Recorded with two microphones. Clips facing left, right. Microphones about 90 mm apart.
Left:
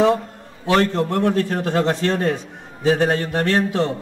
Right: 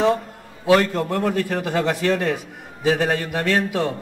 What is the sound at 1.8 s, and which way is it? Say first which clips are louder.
Speech: left 1 dB; 35° left (ahead or behind).